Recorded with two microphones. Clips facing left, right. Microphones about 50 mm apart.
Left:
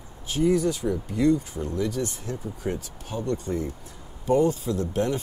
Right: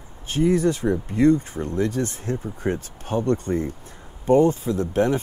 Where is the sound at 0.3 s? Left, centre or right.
Right.